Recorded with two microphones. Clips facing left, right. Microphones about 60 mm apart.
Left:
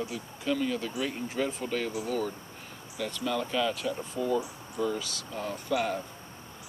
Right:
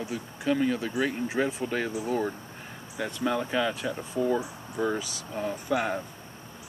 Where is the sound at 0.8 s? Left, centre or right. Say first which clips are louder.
Right 5 dB; right.